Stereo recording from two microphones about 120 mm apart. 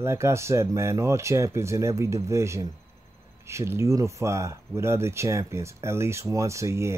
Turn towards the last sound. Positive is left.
turn(degrees=-25)  # may be behind; listen again after turning